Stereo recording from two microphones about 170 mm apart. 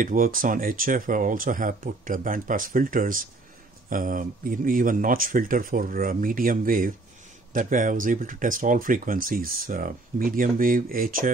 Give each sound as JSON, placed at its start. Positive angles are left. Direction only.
{"t": 0.0, "sound": "speech", "side_deg": -55}